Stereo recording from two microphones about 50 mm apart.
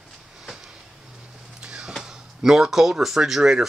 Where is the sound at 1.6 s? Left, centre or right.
Centre.